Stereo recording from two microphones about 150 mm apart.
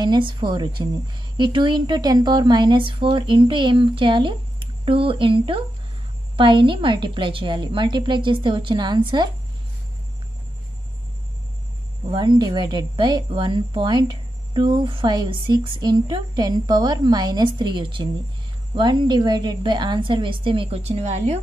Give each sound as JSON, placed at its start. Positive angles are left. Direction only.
{"t": 0.0, "sound": "a woman's voice", "side_deg": -30}
{"t": 12.1, "sound": "a woman's voice", "side_deg": -30}